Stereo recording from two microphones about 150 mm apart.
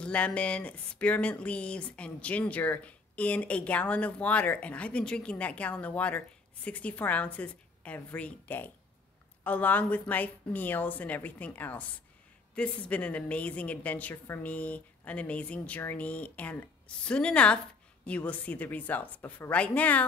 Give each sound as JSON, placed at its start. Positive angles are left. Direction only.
{"t": 0.0, "sound": "speech", "side_deg": 10}